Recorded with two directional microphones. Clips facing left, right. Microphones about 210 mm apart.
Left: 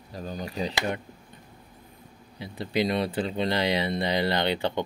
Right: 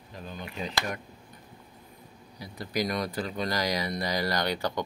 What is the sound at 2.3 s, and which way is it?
Speech, 25° left (ahead or behind).